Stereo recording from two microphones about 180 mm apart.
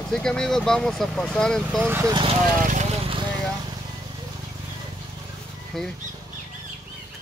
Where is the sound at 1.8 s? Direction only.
10° right (ahead or behind).